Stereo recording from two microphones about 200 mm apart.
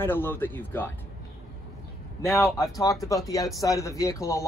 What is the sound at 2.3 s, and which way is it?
Speech, 15° left (ahead or behind).